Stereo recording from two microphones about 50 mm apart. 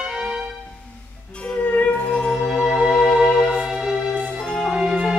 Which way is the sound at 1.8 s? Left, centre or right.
Left.